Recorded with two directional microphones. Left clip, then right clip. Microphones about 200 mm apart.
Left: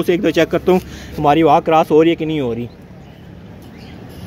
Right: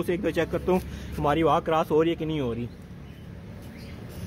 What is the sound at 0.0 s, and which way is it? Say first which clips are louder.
Speech: left 12 dB; 20° left (ahead or behind).